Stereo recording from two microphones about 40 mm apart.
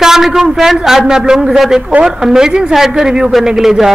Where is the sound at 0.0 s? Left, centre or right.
Centre.